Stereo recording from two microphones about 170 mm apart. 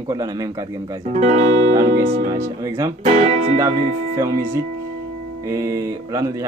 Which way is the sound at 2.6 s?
20° right (ahead or behind).